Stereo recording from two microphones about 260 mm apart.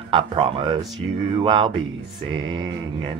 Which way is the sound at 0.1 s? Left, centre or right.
Centre.